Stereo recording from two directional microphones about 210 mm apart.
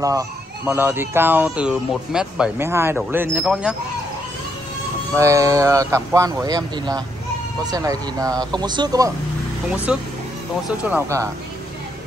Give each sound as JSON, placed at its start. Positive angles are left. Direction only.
{"t": 0.7, "sound": "speech", "side_deg": -10}
{"t": 5.1, "sound": "speech", "side_deg": -15}
{"t": 9.9, "sound": "speech", "side_deg": -5}